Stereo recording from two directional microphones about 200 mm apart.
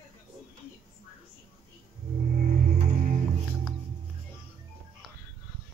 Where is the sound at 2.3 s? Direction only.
45° right (ahead or behind).